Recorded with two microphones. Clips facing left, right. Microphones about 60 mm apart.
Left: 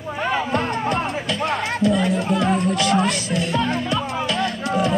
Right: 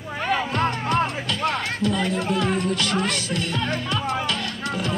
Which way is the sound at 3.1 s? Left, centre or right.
Right.